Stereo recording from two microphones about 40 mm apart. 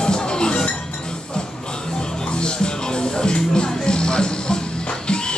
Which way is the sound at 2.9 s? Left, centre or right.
Left.